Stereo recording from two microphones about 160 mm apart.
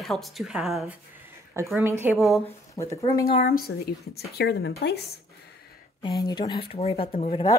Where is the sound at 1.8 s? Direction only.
15° right (ahead or behind).